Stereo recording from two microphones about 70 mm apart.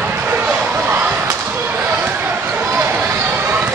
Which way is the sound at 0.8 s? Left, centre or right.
Right.